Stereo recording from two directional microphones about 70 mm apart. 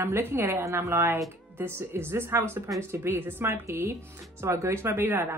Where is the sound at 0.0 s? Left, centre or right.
Right.